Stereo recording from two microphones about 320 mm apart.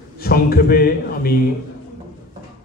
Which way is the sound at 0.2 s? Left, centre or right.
Left.